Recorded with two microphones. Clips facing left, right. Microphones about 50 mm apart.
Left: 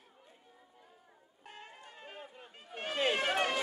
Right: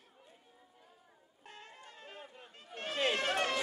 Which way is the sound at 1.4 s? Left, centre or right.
Centre.